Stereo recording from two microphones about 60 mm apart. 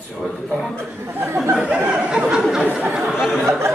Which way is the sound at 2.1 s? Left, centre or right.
Centre.